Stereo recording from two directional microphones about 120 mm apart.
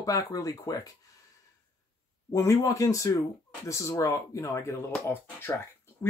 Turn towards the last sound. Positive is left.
turn(degrees=20)  # may be behind; listen again after turning